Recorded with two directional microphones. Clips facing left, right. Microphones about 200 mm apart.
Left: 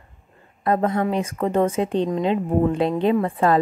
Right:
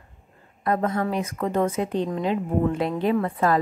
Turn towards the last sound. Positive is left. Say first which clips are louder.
# left 3 dB
turn(degrees=30)  # may be behind; listen again after turning